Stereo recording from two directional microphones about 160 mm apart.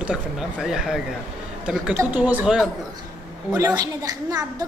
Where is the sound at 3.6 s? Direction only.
25° right (ahead or behind).